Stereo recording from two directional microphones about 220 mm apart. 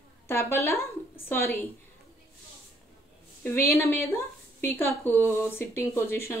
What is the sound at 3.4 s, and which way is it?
A woman's voice, 10° left (ahead or behind).